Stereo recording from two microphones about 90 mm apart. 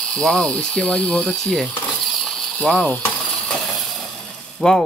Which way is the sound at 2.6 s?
5° left (ahead or behind).